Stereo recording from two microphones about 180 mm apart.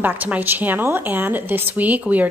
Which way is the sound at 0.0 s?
10° right (ahead or behind).